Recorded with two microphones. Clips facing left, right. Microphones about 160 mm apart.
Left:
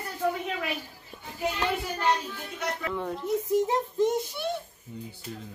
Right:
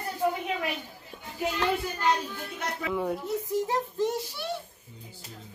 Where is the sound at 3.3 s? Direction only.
20° left (ahead or behind).